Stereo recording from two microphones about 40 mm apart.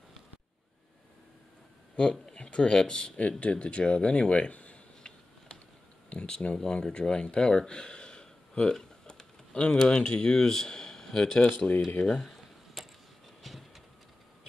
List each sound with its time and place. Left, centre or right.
2.0 s speech: left
3.2 s speech: left; by 11.3 s centre
11.3 s speech: left
12.2 s a sound: centre
13.4 s train: centre